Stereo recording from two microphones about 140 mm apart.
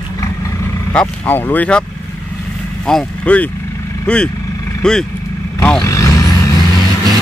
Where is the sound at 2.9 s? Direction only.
5° left (ahead or behind).